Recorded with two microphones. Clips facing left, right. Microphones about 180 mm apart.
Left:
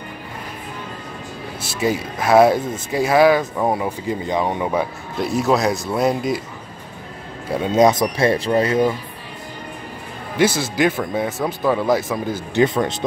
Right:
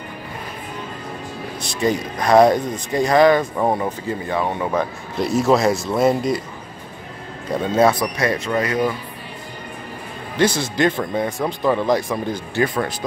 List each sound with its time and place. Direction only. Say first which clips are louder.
1.6 s speech: right 1 dB; 5° left (ahead or behind)
4.1 s speech: left 3 dB; 15° left (ahead or behind); by 6.4 s centre (ahead or behind)
7.5 s speech: left 1 dB; 15° left (ahead or behind)
10.3 s speech: left 1 dB; 5° left (ahead or behind)
12.5 s speech: left 4 dB; 25° left (ahead or behind)